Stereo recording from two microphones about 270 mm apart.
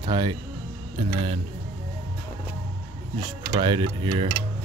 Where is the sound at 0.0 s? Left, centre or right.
Centre.